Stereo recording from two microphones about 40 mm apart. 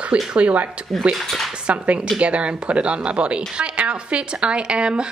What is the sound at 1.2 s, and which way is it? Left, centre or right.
Speech, centre.